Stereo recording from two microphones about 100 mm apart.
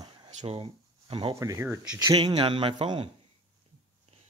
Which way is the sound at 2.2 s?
50° right (ahead or behind).